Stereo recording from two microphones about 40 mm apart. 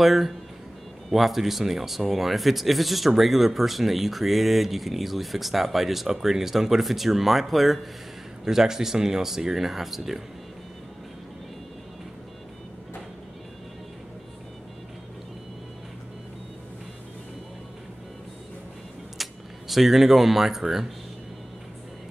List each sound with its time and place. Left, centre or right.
0.0 s speech: centre
8.5 s speech: centre
19.2 s a sound: centre
19.7 s speech: centre